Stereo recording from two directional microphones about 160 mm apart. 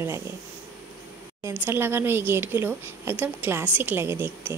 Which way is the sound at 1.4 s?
15° right (ahead or behind).